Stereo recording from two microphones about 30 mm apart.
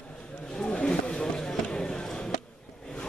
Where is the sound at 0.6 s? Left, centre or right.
Left.